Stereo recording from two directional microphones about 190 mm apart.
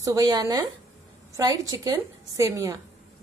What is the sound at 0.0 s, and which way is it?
A woman's voice, 20° right (ahead or behind).